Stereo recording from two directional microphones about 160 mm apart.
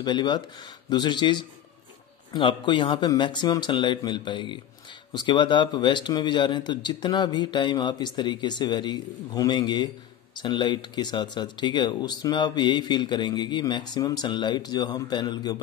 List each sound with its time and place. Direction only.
0.0 s speech: 30° left (ahead or behind)